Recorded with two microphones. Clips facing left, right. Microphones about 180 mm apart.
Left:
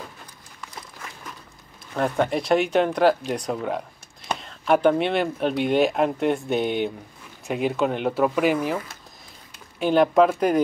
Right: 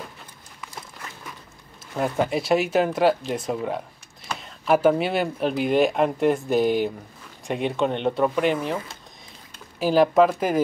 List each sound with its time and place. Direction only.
2.0 s speech: 5° right (ahead or behind)
9.8 s speech: centre (ahead or behind)